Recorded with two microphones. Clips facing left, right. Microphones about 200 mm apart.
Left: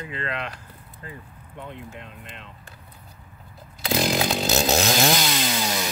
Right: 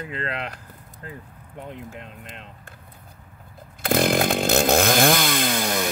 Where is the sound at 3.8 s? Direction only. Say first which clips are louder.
Right 3 dB; 55° right (ahead or behind).